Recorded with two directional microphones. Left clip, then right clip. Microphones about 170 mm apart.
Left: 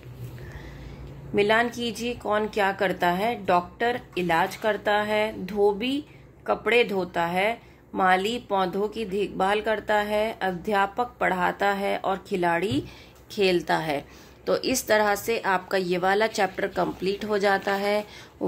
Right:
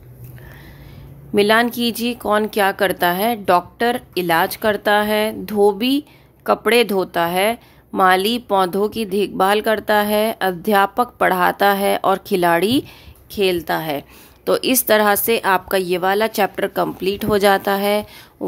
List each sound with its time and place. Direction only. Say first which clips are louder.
1.3 s speech: right 7 dB; 60° right (ahead or behind)
13.3 s a woman's voice: right 4 dB; 35° right (ahead or behind)